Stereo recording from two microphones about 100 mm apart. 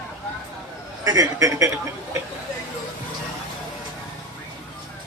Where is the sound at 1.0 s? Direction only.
35° right (ahead or behind).